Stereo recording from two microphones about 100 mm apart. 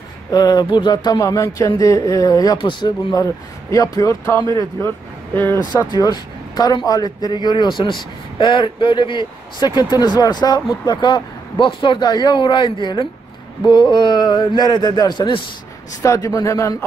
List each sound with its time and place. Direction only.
0.3 s speech: 40° left (ahead or behind)
5.3 s speech: 20° left (ahead or behind)
5.9 s speech: 40° left (ahead or behind)
16.0 s speech: 30° left (ahead or behind)